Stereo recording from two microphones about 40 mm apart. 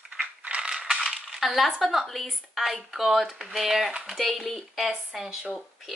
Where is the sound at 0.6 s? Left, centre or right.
Centre.